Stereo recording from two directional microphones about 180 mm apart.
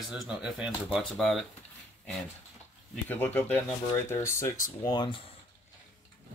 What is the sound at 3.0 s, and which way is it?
Speech, 10° left (ahead or behind).